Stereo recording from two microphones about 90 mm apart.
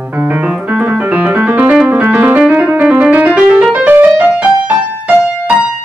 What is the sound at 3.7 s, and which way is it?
Music, 15° right (ahead or behind).